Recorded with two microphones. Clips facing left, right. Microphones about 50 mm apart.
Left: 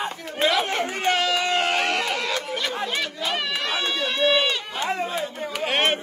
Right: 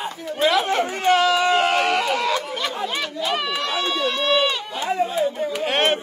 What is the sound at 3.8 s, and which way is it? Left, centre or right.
Run, centre.